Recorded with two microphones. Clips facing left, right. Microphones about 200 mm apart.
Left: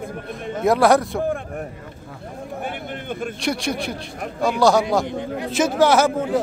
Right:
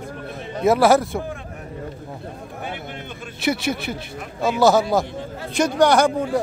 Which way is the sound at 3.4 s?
5° right (ahead or behind).